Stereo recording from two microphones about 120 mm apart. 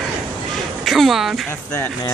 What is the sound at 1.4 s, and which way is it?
Speech, 20° left (ahead or behind).